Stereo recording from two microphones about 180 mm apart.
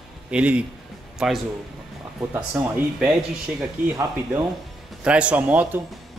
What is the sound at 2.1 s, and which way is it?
Speech, 10° right (ahead or behind).